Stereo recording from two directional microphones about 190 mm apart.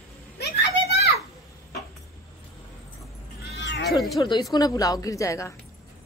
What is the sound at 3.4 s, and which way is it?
Cat, 65° left (ahead or behind).